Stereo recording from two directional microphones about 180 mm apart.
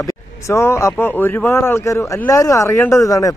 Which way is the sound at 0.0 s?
20° left (ahead or behind).